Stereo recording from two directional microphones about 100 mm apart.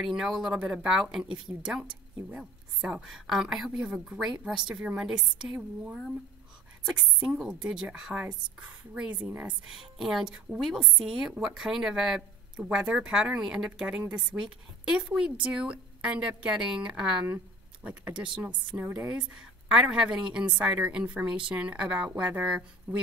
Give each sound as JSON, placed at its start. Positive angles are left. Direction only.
{"t": 0.0, "sound": "a woman's voice", "side_deg": -5}